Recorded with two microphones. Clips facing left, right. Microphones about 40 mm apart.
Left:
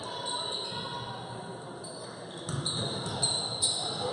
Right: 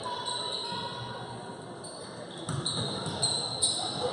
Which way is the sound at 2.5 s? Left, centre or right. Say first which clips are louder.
Even; centre.